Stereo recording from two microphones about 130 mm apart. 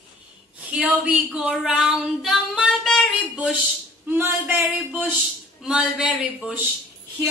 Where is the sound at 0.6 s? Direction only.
10° right (ahead or behind).